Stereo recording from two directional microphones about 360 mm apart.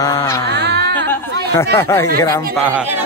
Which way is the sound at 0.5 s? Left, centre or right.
Right.